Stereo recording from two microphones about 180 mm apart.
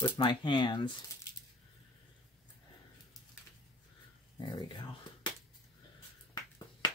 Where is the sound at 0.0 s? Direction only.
25° left (ahead or behind).